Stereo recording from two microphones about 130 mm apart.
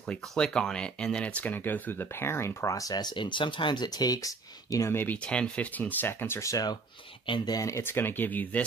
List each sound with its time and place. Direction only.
0.0 s speech: 5° left (ahead or behind)